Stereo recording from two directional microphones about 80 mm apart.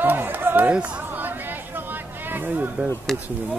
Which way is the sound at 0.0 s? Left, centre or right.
Right.